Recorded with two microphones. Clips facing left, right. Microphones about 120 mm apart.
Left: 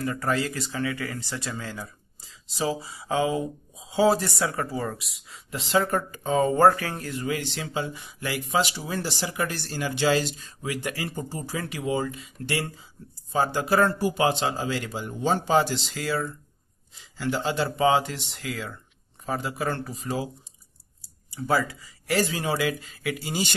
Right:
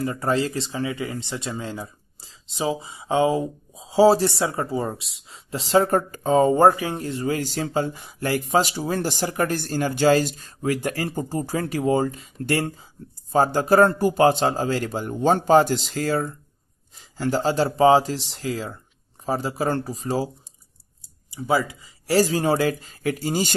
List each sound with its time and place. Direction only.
0.0 s speech: 25° right (ahead or behind)
6.5 s speech: 20° right (ahead or behind)
21.3 s speech: 15° right (ahead or behind)
22.0 s speech: 35° right (ahead or behind)